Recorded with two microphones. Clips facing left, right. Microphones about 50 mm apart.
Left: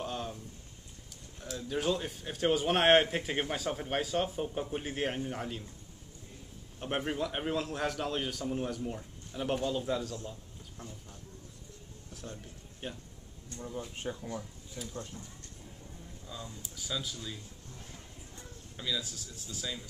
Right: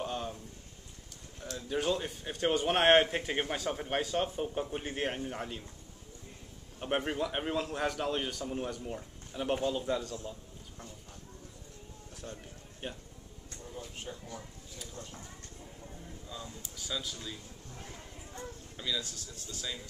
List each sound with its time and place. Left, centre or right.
0.0 s a sound: centre
1.4 s speech: centre
6.8 s speech: centre
12.1 s a sound: centre
12.8 s speech: centre
13.6 s speech: left
14.8 s speech: centre
16.3 s speech: centre
18.8 s speech: centre